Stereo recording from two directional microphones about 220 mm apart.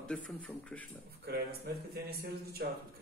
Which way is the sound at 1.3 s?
45° right (ahead or behind).